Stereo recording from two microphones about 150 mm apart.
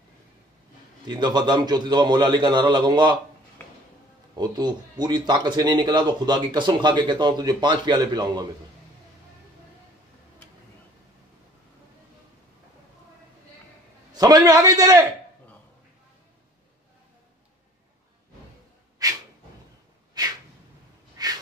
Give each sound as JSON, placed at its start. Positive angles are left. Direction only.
{"t": 1.0, "sound": "speech", "side_deg": -30}
{"t": 4.4, "sound": "speech", "side_deg": -25}
{"t": 14.1, "sound": "speech", "side_deg": -25}
{"t": 19.0, "sound": "a sound", "side_deg": -25}
{"t": 21.2, "sound": "snort", "side_deg": -25}